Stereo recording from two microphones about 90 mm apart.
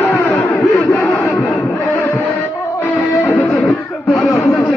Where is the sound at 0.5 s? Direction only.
35° left (ahead or behind).